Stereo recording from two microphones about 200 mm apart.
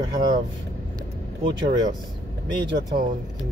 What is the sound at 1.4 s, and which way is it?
Speech, 20° right (ahead or behind).